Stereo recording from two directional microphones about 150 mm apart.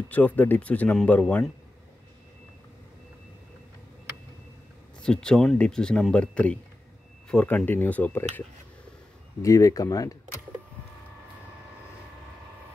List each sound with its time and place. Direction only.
0.1 s speech: 10° left (ahead or behind)
5.0 s speech: 5° left (ahead or behind); by 10.1 s 25° left (ahead or behind)